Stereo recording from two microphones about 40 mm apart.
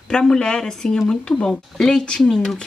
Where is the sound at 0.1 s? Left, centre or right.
Centre.